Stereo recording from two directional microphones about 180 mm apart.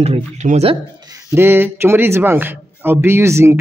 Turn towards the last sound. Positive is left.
turn(degrees=-15)  # may be behind; listen again after turning